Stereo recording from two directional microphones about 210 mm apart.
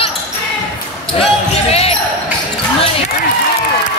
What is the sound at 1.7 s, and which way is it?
Basketball bounce, 30° left (ahead or behind).